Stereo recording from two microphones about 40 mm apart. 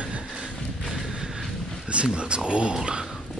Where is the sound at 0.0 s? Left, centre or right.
Right.